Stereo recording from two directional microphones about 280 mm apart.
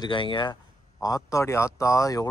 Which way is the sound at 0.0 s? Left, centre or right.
Centre.